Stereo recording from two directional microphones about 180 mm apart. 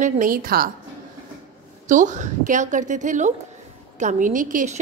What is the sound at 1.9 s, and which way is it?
A woman's voice, 40° right (ahead or behind).